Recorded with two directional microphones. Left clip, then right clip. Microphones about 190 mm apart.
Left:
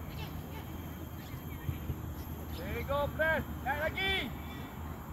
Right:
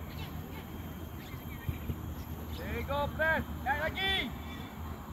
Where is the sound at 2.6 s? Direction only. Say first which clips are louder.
Even; 55° left (ahead or behind).